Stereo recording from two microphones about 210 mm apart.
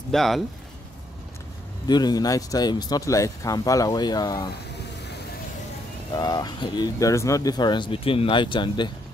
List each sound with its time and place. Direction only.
0.1 s speech: centre (ahead or behind)
1.9 s speech: 20° left (ahead or behind)
6.1 s speech: 20° left (ahead or behind)